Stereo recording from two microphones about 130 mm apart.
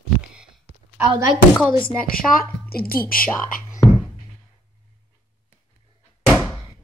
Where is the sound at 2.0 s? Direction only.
90° left.